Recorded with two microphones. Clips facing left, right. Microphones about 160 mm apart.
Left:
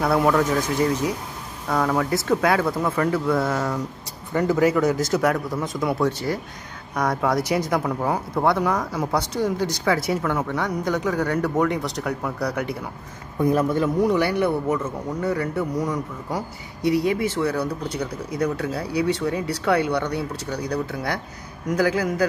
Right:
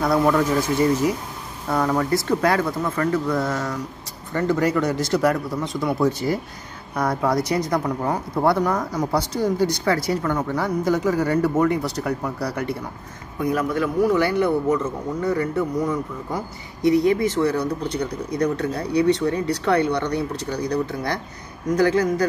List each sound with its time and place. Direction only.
0.0 s speech: 5° left (ahead or behind)
13.5 s speech: 25° left (ahead or behind)
14.1 s speech: 10° left (ahead or behind)